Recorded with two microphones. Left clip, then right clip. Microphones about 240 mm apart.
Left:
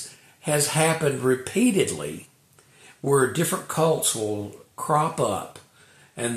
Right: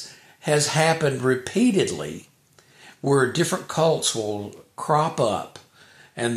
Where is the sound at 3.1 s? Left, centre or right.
Right.